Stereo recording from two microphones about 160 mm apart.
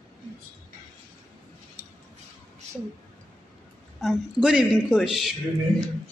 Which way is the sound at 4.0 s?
5° right (ahead or behind).